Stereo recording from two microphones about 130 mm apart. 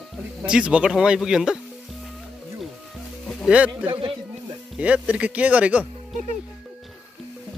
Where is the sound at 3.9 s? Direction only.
45° right (ahead or behind).